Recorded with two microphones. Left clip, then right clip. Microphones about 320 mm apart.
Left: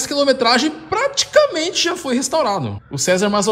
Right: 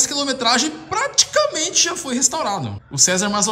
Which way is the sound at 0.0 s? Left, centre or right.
Centre.